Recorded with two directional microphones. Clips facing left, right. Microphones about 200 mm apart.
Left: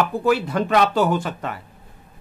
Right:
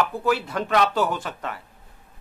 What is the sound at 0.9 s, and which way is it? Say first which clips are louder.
Speech: left 4 dB; 30° left (ahead or behind).